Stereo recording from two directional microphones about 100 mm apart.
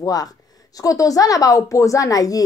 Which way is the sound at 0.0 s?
40° left (ahead or behind).